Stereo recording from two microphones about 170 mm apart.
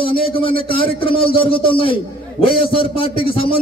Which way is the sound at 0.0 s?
30° left (ahead or behind).